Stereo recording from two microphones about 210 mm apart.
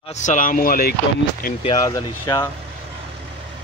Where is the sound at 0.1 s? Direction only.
35° left (ahead or behind).